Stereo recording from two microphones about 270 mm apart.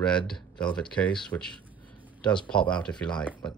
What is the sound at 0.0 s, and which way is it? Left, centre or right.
Speech, centre.